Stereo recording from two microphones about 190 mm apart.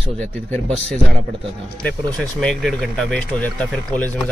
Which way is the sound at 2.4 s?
Centre (ahead or behind).